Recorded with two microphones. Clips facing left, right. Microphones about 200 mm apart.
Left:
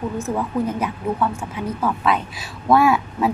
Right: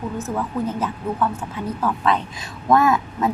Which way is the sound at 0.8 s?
10° left (ahead or behind).